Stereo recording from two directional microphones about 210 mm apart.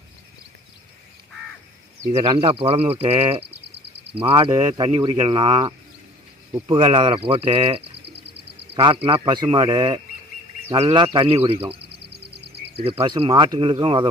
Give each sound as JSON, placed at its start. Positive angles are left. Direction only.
{"t": 2.2, "sound": "speech", "side_deg": -25}
{"t": 11.8, "sound": "a sound", "side_deg": -50}
{"t": 12.8, "sound": "speech", "side_deg": -25}